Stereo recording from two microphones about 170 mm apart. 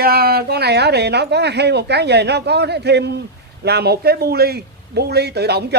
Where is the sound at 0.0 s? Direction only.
65° right (ahead or behind).